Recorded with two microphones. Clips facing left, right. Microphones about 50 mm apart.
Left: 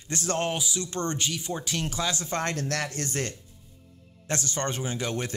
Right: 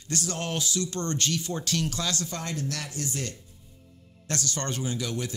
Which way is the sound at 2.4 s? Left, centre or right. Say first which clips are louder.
Left 4 dB; left.